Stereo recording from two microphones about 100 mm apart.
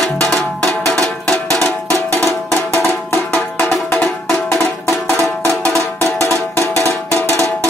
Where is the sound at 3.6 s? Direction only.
10° left (ahead or behind).